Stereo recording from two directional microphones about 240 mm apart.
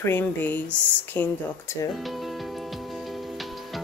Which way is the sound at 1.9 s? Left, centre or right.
Centre.